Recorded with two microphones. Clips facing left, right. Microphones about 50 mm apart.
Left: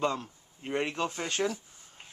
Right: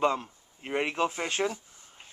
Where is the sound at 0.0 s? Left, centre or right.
Centre.